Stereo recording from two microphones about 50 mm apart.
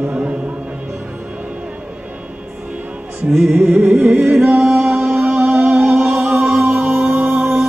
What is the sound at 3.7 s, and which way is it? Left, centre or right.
Music, right.